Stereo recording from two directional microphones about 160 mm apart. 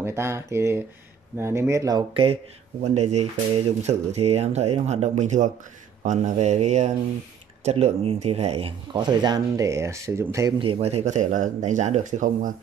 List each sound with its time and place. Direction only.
0.0 s speech: 15° right (ahead or behind)
2.8 s speech: 45° right (ahead or behind); by 10.5 s 20° right (ahead or behind)
10.6 s speech: 35° right (ahead or behind); by 12.5 s 50° right (ahead or behind)